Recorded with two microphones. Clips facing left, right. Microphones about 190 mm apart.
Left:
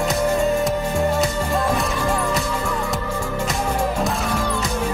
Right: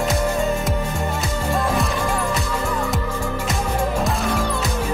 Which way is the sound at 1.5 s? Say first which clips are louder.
Even; centre (ahead or behind).